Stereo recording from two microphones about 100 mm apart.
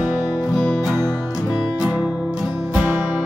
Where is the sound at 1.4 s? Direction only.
Centre (ahead or behind).